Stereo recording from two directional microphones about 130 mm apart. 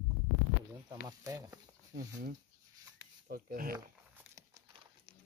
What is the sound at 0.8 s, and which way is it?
Speech, 30° right (ahead or behind).